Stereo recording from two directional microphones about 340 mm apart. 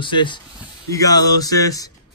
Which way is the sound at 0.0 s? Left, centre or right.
Centre.